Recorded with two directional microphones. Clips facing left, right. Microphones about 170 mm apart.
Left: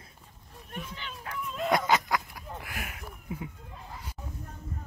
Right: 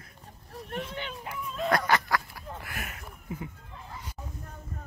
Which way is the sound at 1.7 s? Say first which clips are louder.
Even; 20° left (ahead or behind).